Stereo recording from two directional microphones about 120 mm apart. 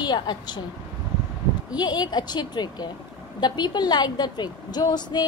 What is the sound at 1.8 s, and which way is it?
A woman's voice, 35° left (ahead or behind).